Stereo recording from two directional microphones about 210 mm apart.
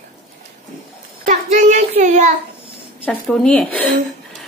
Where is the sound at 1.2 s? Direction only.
40° right (ahead or behind).